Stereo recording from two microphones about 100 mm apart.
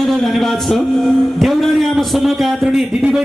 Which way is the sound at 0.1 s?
Centre (ahead or behind).